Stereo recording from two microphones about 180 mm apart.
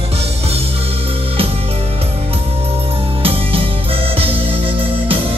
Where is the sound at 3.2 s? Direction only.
30° right (ahead or behind).